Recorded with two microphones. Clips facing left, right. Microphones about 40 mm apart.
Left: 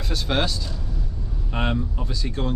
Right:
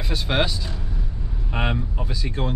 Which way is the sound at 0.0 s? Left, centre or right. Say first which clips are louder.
Right 1 dB; centre.